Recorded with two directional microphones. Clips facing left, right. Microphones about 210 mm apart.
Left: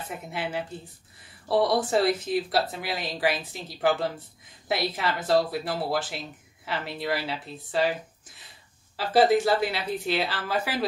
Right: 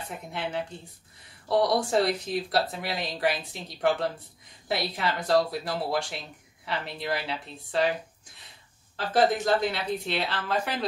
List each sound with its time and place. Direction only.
0.3 s speech: 5° left (ahead or behind)
8.9 s speech: 5° left (ahead or behind)